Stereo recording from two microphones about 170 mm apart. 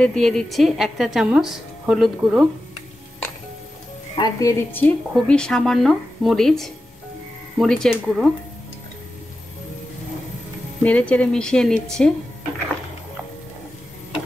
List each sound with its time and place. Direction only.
0.0 s a woman's voice: 5° left (ahead or behind)
4.2 s a woman's voice: 20° left (ahead or behind)
5.1 s a woman's voice: 5° left (ahead or behind)
10.8 s a woman's voice: 10° left (ahead or behind)